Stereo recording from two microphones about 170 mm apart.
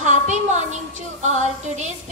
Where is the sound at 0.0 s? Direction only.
45° right (ahead or behind).